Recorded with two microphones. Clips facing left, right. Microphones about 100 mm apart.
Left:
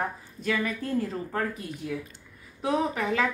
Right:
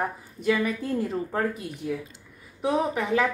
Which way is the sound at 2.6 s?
20° right (ahead or behind).